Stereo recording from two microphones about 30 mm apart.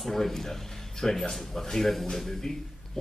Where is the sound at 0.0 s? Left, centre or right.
Centre.